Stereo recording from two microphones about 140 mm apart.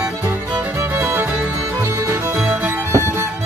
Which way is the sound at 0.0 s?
15° right (ahead or behind).